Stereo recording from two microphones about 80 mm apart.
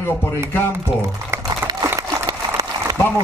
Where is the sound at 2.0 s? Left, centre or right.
Right.